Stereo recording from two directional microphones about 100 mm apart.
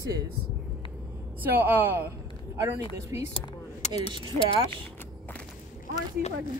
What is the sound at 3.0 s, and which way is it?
Speech, 30° right (ahead or behind).